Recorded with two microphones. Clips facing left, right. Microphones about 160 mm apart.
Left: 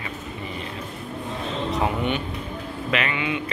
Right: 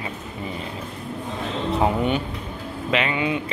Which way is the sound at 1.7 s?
35° right (ahead or behind).